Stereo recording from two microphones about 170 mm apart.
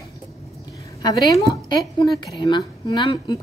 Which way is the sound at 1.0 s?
25° left (ahead or behind).